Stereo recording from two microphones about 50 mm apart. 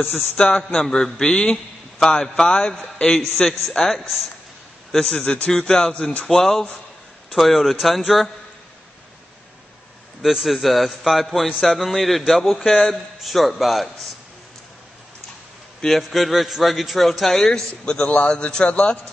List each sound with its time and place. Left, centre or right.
0.1 s a man's voice: left
0.6 s a man's voice: centre
4.9 s a man's voice: centre
10.2 s a man's voice: centre
15.8 s a man's voice: centre
18.0 s a man's voice: left